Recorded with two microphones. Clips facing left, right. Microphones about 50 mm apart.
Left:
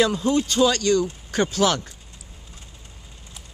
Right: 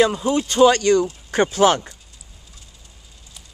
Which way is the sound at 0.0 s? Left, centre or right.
Right.